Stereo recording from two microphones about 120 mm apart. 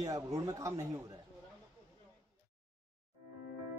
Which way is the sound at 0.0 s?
30° right (ahead or behind).